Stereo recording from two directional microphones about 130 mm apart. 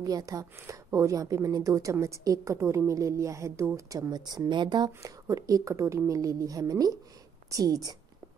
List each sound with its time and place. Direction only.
0.0 s a woman's voice: 30° right (ahead or behind)